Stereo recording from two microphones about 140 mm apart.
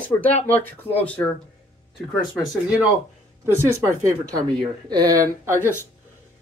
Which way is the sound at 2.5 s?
5° right (ahead or behind).